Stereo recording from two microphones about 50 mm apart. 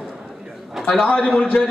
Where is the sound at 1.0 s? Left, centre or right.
Left.